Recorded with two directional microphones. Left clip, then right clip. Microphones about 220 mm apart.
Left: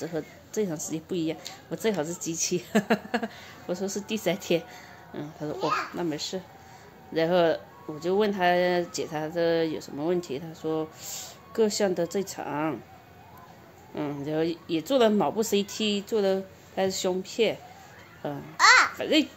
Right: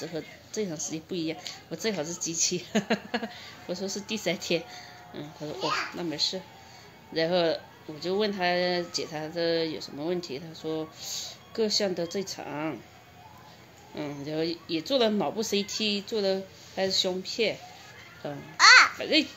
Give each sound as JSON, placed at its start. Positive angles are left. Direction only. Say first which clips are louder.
{"t": 0.0, "sound": "a woman's voice", "louder": "left 3 dB", "side_deg": 5}
{"t": 13.9, "sound": "a woman's voice", "louder": "left 3 dB", "side_deg": 5}
{"t": 18.6, "sound": "babbling", "louder": "right 2 dB", "side_deg": 20}
{"t": 18.9, "sound": "a woman's voice", "louder": "left 1 dB", "side_deg": 5}